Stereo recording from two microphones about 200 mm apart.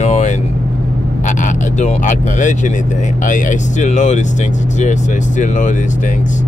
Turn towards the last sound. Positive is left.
turn(degrees=40)  # may be behind; listen again after turning